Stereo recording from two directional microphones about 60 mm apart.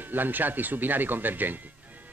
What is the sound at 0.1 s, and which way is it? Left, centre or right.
Speech, right.